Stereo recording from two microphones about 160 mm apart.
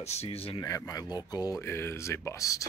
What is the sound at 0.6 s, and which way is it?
Speech, 20° left (ahead or behind).